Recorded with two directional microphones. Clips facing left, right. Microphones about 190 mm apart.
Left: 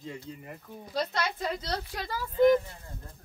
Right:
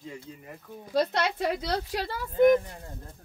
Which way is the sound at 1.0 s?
60° right (ahead or behind).